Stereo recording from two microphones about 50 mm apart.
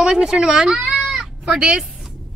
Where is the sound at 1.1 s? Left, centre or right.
Centre.